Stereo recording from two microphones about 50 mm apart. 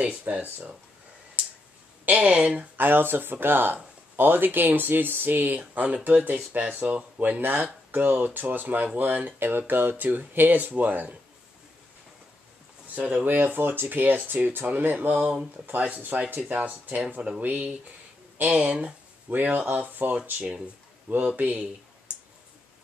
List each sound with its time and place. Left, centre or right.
0.2 s speech: right
2.0 s speech: right
2.8 s speech: right
13.2 s speech: right
16.4 s speech: right
18.6 s a sound: right
19.3 s speech: right
22.1 s clicking: right